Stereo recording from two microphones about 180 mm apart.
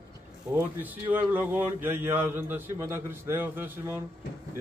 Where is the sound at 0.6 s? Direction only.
10° right (ahead or behind).